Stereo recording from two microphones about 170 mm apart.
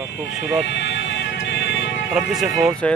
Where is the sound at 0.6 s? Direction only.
90° left.